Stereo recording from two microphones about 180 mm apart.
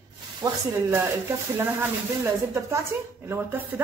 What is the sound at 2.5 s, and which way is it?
A woman's voice, 15° right (ahead or behind).